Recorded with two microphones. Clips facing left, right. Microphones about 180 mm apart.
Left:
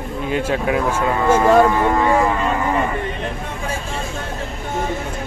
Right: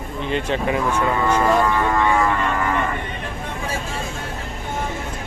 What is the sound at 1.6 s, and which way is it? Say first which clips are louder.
Speech: left 4 dB; 25° left (ahead or behind).